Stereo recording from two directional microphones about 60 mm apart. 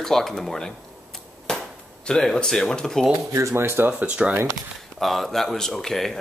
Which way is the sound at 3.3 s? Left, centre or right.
Right.